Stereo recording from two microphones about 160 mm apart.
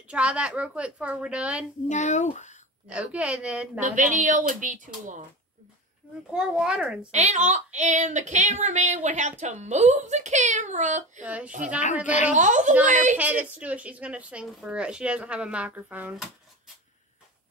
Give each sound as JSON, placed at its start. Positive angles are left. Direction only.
{"t": 0.1, "sound": "speech", "side_deg": -5}
{"t": 1.9, "sound": "speech", "side_deg": 50}
{"t": 2.9, "sound": "speech", "side_deg": -5}
{"t": 3.8, "sound": "speech", "side_deg": -50}
{"t": 6.3, "sound": "a child's voice", "side_deg": -5}
{"t": 7.1, "sound": "speech", "side_deg": -45}
{"t": 11.2, "sound": "speech", "side_deg": -10}
{"t": 12.4, "sound": "speech", "side_deg": -50}
{"t": 13.2, "sound": "speech", "side_deg": -10}